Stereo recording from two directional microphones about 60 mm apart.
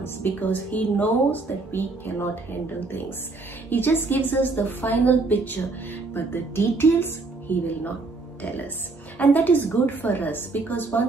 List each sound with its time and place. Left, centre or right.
0.0 s speech: left